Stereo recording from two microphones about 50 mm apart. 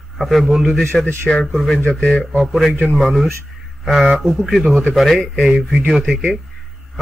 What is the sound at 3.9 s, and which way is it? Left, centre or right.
A man's voice, centre.